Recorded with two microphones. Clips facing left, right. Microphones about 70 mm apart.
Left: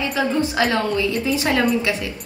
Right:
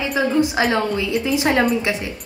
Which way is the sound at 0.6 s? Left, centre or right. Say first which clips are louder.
Even; right.